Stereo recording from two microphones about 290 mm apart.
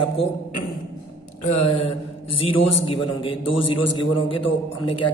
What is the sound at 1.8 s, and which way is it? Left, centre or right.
Mantra, centre.